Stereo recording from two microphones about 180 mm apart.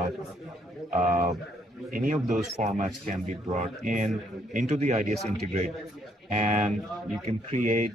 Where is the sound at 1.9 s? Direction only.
45° right (ahead or behind).